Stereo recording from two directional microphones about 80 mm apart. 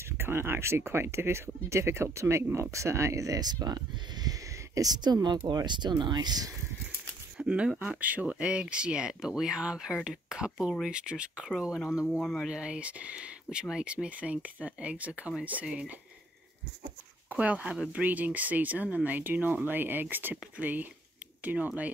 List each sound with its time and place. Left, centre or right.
0.0 s speech: right
7.3 s speech: centre
12.2 s speech: centre
12.4 s speech: centre
17.3 s speech: centre